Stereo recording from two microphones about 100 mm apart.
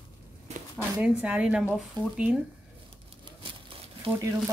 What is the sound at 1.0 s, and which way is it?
Speech, 10° right (ahead or behind).